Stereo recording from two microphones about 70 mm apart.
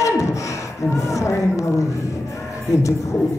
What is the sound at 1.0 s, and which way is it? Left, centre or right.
Speech, left.